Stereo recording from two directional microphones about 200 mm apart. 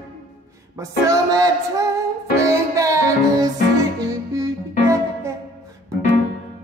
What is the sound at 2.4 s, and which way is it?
Music, 15° right (ahead or behind).